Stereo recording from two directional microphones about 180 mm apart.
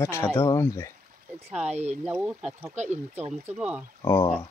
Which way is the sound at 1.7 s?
35° right (ahead or behind).